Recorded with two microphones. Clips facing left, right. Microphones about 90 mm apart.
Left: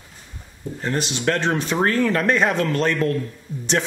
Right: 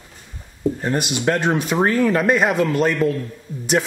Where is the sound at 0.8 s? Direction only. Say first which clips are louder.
Even; 15° right (ahead or behind).